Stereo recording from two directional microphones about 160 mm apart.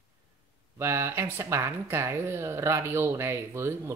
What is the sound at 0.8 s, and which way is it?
Speech, 15° right (ahead or behind).